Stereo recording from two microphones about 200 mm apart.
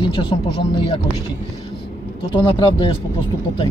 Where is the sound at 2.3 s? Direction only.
25° left (ahead or behind).